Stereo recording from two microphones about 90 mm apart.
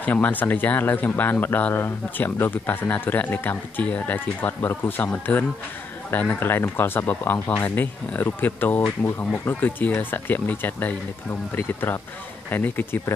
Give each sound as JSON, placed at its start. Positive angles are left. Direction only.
{"t": 0.0, "sound": "speech", "side_deg": 20}